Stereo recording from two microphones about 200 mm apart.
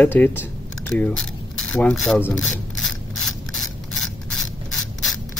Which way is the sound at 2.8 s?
Centre (ahead or behind).